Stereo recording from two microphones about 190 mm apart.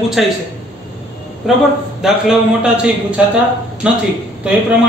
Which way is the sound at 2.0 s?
5° right (ahead or behind).